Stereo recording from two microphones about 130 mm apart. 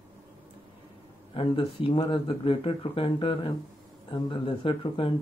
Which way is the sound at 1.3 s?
45° left (ahead or behind).